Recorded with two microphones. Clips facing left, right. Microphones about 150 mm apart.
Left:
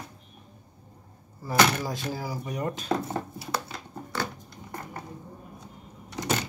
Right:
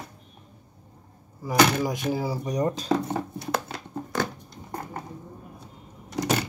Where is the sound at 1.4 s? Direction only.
20° right (ahead or behind).